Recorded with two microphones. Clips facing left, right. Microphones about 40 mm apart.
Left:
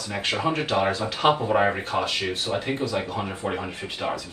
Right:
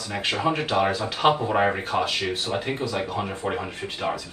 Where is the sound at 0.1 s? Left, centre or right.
Centre.